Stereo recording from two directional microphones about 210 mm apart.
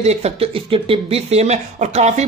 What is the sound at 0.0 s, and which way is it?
Speech, 30° right (ahead or behind).